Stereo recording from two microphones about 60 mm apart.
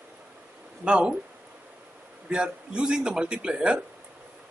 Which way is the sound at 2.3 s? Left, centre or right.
Centre.